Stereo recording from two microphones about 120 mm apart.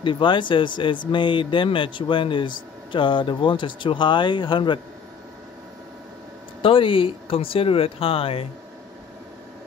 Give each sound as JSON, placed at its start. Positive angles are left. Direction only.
{"t": 0.0, "sound": "speech", "side_deg": 40}
{"t": 6.6, "sound": "speech", "side_deg": 45}